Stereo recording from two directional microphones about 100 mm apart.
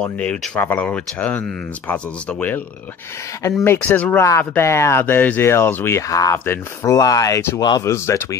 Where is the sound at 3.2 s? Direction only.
30° left (ahead or behind); by 4.2 s 15° left (ahead or behind).